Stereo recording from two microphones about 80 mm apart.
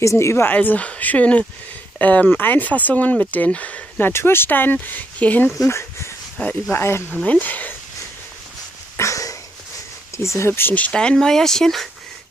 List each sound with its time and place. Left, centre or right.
0.0 s speech: left
0.5 s speech: left
4.1 s speech: left
5.7 s speech: left
6.4 s speech: left
6.7 s speech: left
7.2 s speech: left
8.9 s a sound: left
10.1 s speech: left
10.7 s speech: centre